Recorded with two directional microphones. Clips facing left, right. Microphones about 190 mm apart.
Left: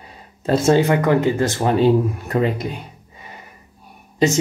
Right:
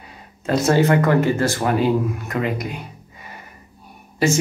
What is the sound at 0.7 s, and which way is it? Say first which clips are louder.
Speech: even; 15° left (ahead or behind).